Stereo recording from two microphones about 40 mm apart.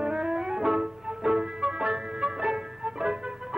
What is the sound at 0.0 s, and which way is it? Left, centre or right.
Music, centre.